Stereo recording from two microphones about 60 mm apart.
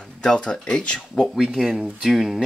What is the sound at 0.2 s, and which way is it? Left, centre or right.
Speech, centre.